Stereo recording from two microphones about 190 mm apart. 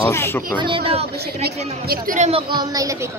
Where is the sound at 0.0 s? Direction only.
10° left (ahead or behind).